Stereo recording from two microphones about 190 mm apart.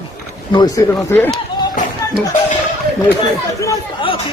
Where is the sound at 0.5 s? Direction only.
20° left (ahead or behind).